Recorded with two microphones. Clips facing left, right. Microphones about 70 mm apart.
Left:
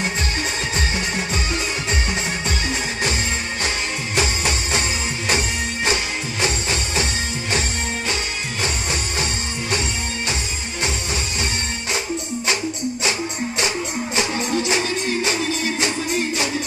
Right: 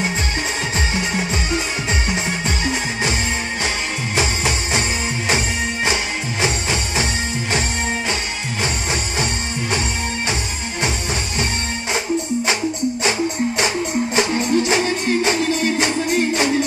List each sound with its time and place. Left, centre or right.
4.1 s music: centre
14.1 s music: right